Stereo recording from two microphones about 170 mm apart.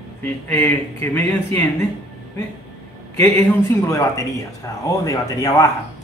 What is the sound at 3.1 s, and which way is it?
Speech, 15° left (ahead or behind).